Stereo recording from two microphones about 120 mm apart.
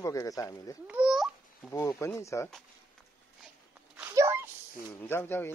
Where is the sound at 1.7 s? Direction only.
25° left (ahead or behind).